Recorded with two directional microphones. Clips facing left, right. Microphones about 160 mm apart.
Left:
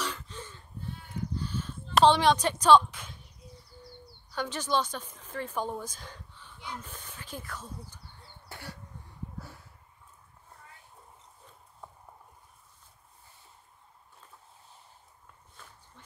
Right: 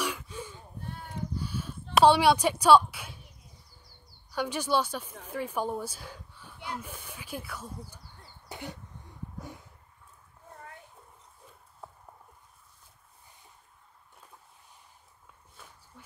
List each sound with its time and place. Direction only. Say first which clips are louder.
0.0 s a sound: right 3 dB; 10° right (ahead or behind)
4.3 s speech: right 2 dB; 10° right (ahead or behind)
8.5 s cough: right 4 dB; 20° right (ahead or behind)